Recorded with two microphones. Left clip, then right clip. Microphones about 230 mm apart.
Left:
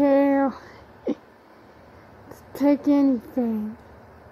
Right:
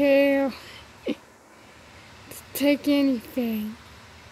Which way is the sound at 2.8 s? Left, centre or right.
Centre.